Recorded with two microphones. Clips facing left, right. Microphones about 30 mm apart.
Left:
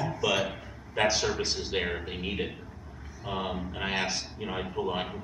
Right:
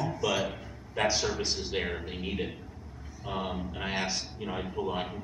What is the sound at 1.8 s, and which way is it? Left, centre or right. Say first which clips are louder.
A man's voice: left 2 dB; centre.